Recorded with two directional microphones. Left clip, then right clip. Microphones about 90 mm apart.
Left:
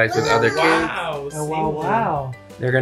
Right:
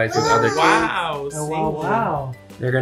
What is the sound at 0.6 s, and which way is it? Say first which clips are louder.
Speech: right 1 dB; 20° right (ahead or behind).